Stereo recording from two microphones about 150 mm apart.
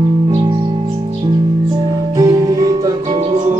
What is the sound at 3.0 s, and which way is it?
Music, 35° right (ahead or behind).